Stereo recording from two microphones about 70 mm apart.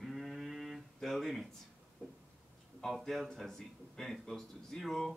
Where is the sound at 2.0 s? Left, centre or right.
Centre.